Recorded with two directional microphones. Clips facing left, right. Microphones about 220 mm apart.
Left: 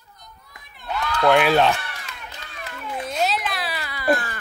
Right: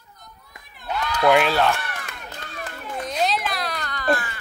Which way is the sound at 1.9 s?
55° right (ahead or behind).